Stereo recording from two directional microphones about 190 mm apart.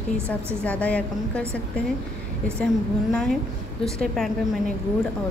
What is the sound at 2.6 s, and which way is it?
A woman's voice, centre (ahead or behind).